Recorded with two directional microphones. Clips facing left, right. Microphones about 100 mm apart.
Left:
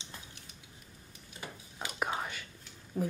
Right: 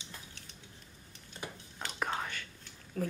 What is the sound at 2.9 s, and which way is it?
Speech, 15° left (ahead or behind).